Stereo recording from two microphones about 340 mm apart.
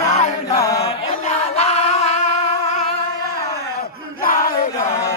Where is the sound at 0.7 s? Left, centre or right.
Centre.